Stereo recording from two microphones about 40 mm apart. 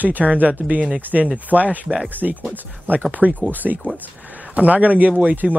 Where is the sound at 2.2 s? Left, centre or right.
Right.